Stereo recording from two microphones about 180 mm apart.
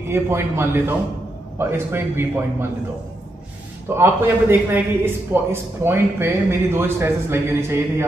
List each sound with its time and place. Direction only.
0.1 s a man's voice: 15° right (ahead or behind)
3.9 s a man's voice: 15° right (ahead or behind)